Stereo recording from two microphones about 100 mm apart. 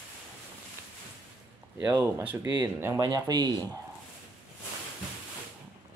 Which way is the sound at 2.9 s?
40° right (ahead or behind).